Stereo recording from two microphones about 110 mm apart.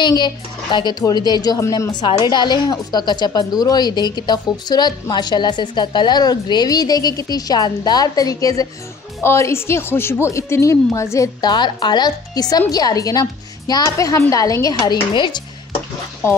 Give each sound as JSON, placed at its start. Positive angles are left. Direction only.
{"t": 0.0, "sound": "a woman's voice", "side_deg": 45}
{"t": 11.4, "sound": "a woman's voice", "side_deg": 45}
{"t": 14.8, "sound": "speech", "side_deg": 45}